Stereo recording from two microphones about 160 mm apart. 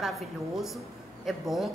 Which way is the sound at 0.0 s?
Centre (ahead or behind).